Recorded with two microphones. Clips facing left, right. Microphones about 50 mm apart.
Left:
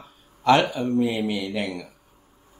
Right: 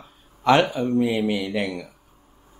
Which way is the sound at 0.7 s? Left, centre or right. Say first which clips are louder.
Right 2 dB; right.